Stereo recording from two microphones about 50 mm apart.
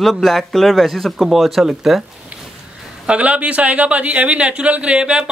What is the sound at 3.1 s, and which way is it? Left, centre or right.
Speech, right.